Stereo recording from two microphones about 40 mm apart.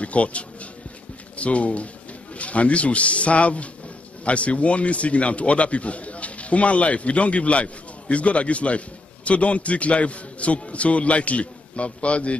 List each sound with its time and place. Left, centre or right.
0.0 s speech: left